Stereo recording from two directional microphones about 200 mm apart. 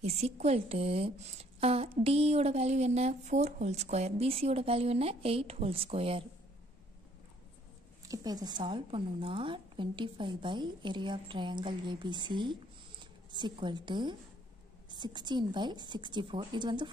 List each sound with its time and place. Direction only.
0.0 s a woman's voice: 35° right (ahead or behind)
8.1 s a woman's voice: 20° right (ahead or behind)